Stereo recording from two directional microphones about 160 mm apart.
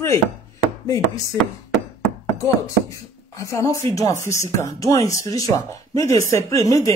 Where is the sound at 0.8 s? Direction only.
20° left (ahead or behind).